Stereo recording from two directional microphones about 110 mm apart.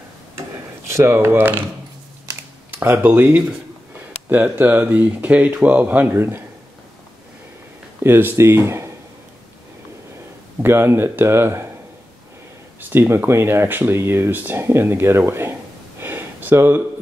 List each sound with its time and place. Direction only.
0.8 s speech: 25° right (ahead or behind)
2.8 s speech: 20° right (ahead or behind)
8.0 s speech: 20° right (ahead or behind)
10.6 s speech: 20° right (ahead or behind)
12.9 s speech: 20° right (ahead or behind)
16.0 s a sound: 20° right (ahead or behind)